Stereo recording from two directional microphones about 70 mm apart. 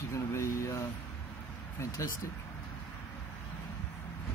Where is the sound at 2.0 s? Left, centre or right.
Left.